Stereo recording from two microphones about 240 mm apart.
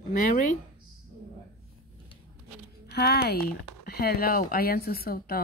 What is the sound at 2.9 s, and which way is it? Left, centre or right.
A woman's voice, left.